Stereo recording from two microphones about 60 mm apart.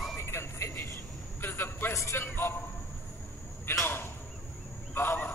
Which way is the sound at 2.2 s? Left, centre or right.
Left.